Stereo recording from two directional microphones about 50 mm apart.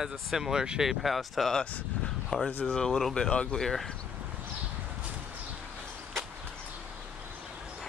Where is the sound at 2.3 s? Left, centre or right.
Left.